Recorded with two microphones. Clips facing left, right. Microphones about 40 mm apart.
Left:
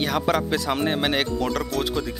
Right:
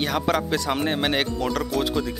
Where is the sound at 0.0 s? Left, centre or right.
Centre.